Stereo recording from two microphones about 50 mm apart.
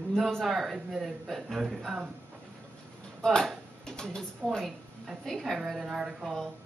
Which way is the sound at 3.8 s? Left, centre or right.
Centre.